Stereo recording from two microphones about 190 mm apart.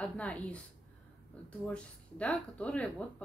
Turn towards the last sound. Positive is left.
turn(degrees=5)  # may be behind; listen again after turning